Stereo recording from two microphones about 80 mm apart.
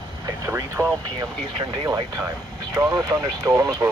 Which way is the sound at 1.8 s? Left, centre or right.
Right.